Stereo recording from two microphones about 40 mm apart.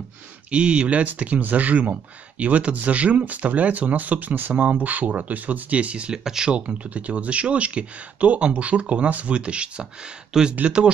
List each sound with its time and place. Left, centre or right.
0.5 s speech: right
6.2 s speech: centre
6.5 s speech: right
10.3 s speech: centre